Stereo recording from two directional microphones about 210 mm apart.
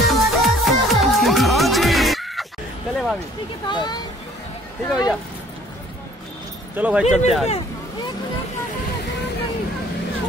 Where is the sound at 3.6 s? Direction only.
20° left (ahead or behind).